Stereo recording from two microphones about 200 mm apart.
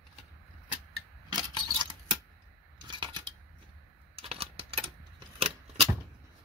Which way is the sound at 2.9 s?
20° right (ahead or behind).